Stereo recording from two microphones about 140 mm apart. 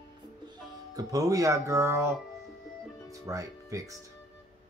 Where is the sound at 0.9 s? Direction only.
25° right (ahead or behind).